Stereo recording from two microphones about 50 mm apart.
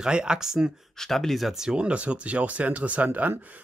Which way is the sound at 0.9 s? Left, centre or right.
Centre.